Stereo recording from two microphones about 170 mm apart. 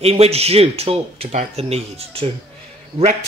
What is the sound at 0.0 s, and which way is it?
Speech, 35° right (ahead or behind).